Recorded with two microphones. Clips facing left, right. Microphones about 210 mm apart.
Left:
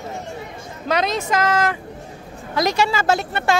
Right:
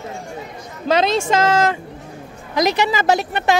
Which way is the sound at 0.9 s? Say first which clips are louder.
Right 4 dB; 25° right (ahead or behind).